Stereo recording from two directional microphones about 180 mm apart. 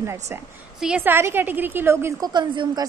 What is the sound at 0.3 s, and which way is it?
A woman's voice, 10° right (ahead or behind).